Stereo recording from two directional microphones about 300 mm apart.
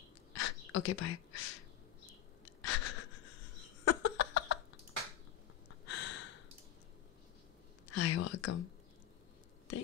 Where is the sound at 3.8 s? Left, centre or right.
Left.